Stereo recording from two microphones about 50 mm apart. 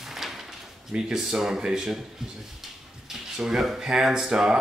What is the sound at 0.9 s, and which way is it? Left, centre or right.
Speech, centre.